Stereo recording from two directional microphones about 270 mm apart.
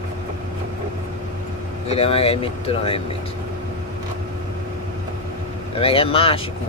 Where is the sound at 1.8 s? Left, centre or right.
Left.